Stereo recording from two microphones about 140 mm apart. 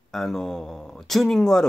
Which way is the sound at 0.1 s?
Centre (ahead or behind).